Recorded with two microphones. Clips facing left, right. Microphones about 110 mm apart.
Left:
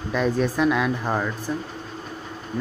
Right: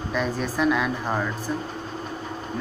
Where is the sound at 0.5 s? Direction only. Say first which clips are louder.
Left 1 dB; 15° left (ahead or behind).